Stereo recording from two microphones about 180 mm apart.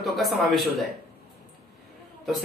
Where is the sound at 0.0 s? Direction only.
Centre (ahead or behind).